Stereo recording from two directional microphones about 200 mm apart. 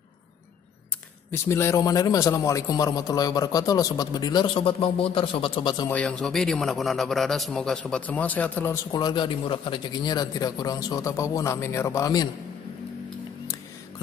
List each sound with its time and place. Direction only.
1.3 s a man's voice: 15° left (ahead or behind)
5.9 s a man's voice: 5° left (ahead or behind)
8.9 s a man's voice: 20° left (ahead or behind)